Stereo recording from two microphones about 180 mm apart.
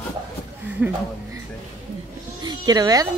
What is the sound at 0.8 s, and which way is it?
Speech, 10° right (ahead or behind).